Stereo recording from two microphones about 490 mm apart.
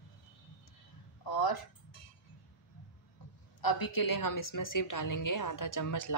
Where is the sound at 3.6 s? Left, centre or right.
Left.